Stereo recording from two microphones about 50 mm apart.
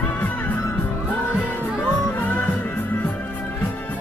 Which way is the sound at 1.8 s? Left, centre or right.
Left.